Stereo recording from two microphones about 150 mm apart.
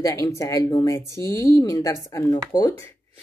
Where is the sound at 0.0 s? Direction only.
20° left (ahead or behind).